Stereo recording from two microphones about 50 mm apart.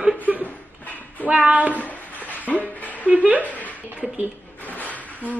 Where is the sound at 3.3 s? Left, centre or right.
Left.